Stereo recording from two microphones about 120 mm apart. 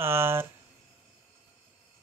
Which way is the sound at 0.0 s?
20° right (ahead or behind).